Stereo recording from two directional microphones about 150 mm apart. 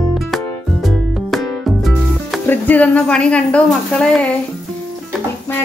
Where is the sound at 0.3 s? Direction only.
Centre (ahead or behind).